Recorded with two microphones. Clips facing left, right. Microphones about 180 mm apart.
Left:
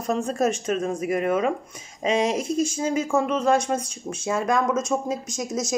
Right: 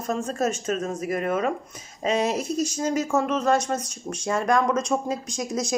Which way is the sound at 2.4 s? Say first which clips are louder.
Left 2 dB; 50° left (ahead or behind).